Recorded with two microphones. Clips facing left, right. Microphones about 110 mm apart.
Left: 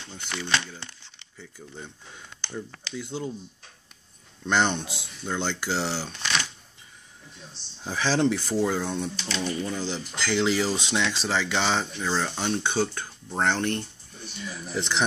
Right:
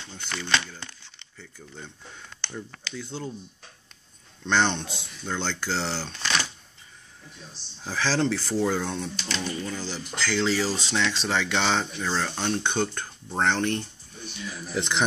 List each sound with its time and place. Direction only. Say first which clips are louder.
0.1 s speech: right 1 dB; 10° left (ahead or behind)
4.5 s speech: even; 10° left (ahead or behind)
7.8 s speech: left 2 dB; 15° left (ahead or behind); by 15.0 s centre (ahead or behind)